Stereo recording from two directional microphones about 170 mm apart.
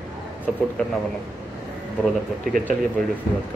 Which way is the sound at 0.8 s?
10° left (ahead or behind).